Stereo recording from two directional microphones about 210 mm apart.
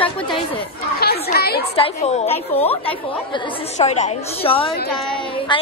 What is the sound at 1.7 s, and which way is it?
A woman's voice, 30° left (ahead or behind).